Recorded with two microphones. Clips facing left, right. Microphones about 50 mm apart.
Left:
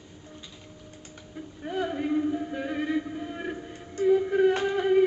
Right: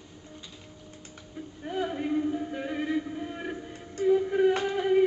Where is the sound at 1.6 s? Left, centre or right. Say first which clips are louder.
Left 2 dB; centre.